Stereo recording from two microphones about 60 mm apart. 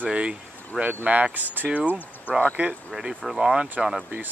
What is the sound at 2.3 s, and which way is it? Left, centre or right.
Speech, left.